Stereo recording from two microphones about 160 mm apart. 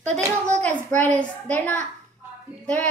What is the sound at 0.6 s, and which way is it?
A woman's voice, 10° left (ahead or behind).